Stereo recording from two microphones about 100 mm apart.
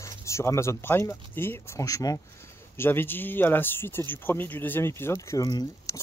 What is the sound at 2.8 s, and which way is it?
Speech, 20° left (ahead or behind).